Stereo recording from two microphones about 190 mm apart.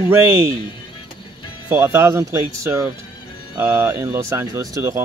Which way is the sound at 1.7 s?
15° right (ahead or behind).